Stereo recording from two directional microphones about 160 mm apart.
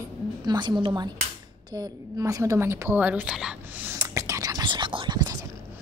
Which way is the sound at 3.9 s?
20° right (ahead or behind).